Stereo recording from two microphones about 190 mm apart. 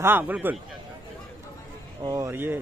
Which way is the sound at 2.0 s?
20° right (ahead or behind).